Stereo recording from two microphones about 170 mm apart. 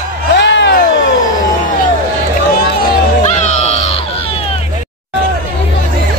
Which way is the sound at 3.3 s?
40° left (ahead or behind).